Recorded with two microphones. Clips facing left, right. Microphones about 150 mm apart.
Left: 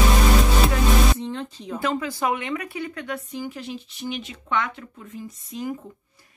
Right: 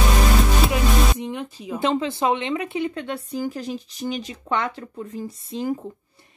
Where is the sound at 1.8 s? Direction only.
25° right (ahead or behind).